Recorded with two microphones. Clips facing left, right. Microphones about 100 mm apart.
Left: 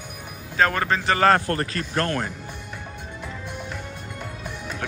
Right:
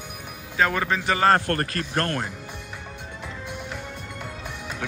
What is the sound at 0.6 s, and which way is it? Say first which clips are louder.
Speech: left 2 dB; 10° right (ahead or behind).